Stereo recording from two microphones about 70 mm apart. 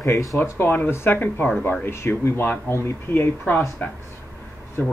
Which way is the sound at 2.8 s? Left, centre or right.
Left.